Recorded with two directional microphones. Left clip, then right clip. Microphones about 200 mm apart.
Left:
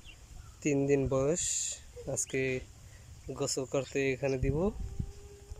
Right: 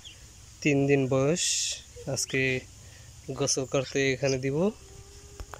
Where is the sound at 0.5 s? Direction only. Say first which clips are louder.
Right 5 dB; centre (ahead or behind).